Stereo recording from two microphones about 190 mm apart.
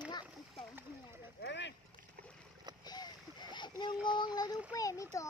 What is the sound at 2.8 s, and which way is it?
Splash, 20° left (ahead or behind).